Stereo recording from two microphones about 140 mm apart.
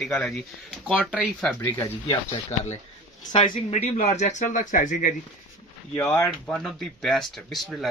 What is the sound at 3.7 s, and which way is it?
Speech, 55° left (ahead or behind).